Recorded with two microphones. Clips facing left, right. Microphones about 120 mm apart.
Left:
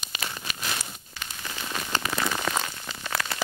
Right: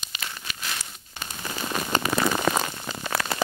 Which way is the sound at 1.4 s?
45° right (ahead or behind).